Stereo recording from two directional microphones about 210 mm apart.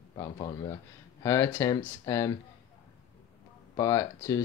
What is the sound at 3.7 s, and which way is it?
Speech, 15° left (ahead or behind).